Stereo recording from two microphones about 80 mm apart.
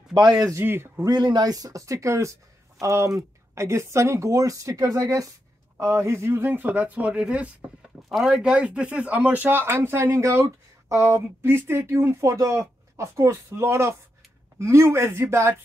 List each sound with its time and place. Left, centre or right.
0.1 s speech: right
0.6 s speech: right
1.0 s speech: right
5.8 s speech: right